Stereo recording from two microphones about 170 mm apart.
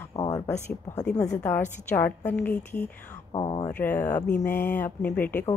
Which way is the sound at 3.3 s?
30° left (ahead or behind).